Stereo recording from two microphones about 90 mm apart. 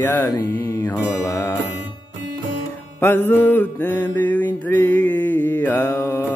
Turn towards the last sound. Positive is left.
turn(degrees=25)  # may be behind; listen again after turning